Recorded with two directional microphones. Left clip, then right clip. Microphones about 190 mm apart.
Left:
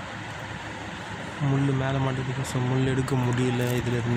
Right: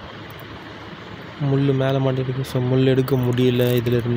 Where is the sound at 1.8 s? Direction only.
35° right (ahead or behind).